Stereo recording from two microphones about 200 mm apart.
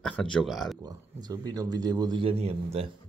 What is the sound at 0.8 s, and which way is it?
Speech, 20° right (ahead or behind).